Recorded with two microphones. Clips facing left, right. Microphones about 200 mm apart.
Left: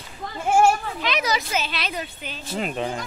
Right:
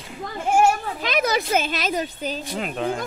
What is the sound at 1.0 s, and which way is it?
Speech, 50° right (ahead or behind).